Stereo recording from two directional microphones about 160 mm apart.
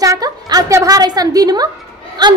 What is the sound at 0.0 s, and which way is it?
A woman's voice, 20° right (ahead or behind).